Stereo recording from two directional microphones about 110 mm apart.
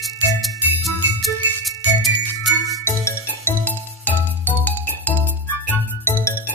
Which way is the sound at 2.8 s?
20° left (ahead or behind).